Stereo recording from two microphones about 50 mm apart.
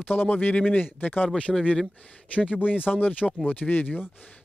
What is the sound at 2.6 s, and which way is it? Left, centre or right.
Speech, left.